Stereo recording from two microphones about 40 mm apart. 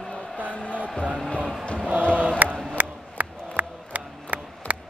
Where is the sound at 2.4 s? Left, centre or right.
Right.